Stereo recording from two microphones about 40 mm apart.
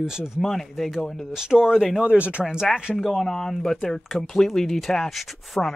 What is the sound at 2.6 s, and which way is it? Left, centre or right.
Speech, centre.